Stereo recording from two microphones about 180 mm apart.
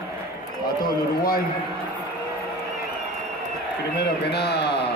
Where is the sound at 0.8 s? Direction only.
55° left (ahead or behind).